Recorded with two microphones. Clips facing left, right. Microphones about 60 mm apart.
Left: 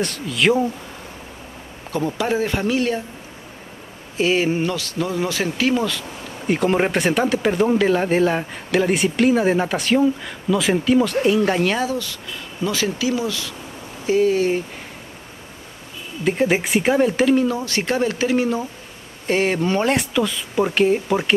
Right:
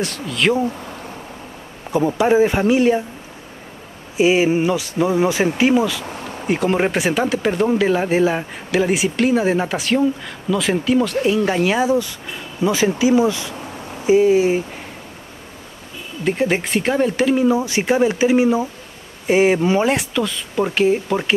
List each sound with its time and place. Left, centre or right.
0.0 s speech: centre
1.9 s speech: centre
4.2 s speech: centre
6.4 s speech: centre
16.3 s speech: centre
17.5 s speech: centre